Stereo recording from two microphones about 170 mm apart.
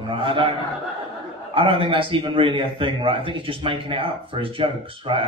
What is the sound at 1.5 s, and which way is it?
A man's voice, 30° right (ahead or behind).